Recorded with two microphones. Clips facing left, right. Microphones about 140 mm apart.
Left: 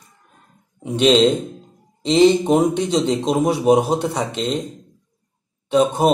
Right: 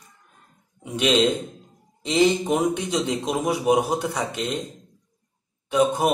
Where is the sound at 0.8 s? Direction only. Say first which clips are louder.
Left 6 dB; 30° left (ahead or behind).